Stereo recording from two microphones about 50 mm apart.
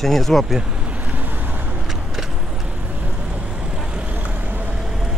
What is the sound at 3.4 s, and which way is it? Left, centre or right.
Vehicle, centre.